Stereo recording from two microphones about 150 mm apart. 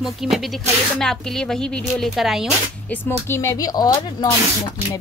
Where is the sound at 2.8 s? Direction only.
10° left (ahead or behind).